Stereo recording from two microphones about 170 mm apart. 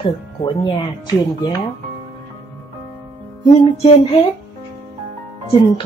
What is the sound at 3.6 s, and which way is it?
Speech, 25° left (ahead or behind).